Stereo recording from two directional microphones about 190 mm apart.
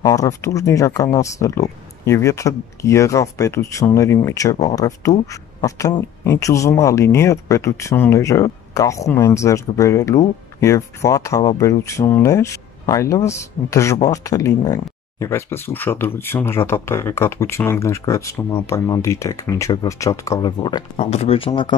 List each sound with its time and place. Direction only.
0.0 s speech: 20° left (ahead or behind)